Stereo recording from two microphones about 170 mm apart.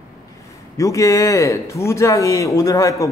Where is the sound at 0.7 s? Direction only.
20° left (ahead or behind).